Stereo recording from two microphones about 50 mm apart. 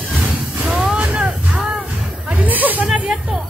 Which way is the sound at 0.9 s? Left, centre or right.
Right.